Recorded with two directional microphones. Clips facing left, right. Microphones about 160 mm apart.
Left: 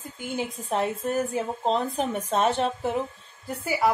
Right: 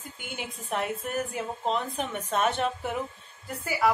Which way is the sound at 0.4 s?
30° left (ahead or behind).